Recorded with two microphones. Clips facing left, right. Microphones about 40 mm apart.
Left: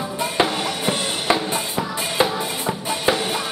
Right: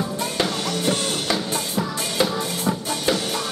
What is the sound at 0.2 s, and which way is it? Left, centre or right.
Music, centre.